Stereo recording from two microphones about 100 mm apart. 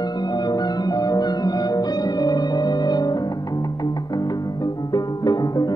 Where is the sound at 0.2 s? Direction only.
45° left (ahead or behind).